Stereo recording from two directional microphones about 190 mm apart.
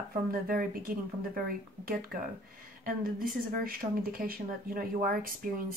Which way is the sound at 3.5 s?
50° right (ahead or behind).